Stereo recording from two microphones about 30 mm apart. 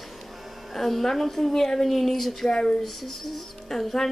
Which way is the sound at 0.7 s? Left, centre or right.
Centre.